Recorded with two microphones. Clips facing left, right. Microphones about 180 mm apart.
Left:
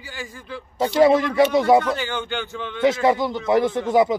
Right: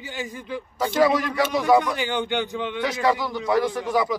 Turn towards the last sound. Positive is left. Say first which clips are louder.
# left 5 dB
turn(degrees=25)  # may be behind; listen again after turning